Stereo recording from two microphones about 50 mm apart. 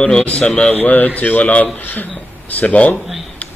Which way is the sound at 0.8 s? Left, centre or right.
Left.